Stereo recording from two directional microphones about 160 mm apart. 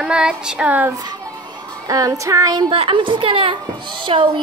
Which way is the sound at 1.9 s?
20° right (ahead or behind).